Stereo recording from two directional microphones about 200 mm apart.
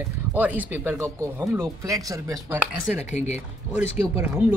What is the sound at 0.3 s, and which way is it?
Speech, 10° right (ahead or behind).